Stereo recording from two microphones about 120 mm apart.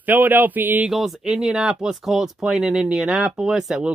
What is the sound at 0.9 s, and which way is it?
Speech, 5° right (ahead or behind).